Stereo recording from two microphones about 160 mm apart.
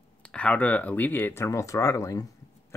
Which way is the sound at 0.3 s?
10° left (ahead or behind).